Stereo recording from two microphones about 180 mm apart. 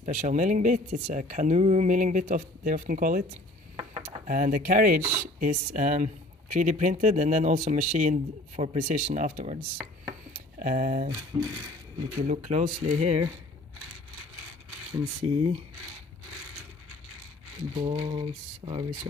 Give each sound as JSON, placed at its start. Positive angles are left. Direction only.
{"t": 0.0, "sound": "speech", "side_deg": -45}
{"t": 4.3, "sound": "speech", "side_deg": -50}
{"t": 5.0, "sound": "chopping", "side_deg": -10}
{"t": 5.4, "sound": "speech", "side_deg": -50}
{"t": 10.6, "sound": "speech", "side_deg": -50}
{"t": 11.3, "sound": "a sound", "side_deg": -25}
{"t": 12.2, "sound": "speech", "side_deg": -40}
{"t": 15.2, "sound": "a sound", "side_deg": -30}
{"t": 17.8, "sound": "a sound", "side_deg": -30}